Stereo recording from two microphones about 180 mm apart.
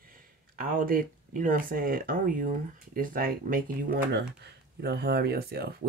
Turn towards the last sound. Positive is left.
turn(degrees=-60)  # may be behind; listen again after turning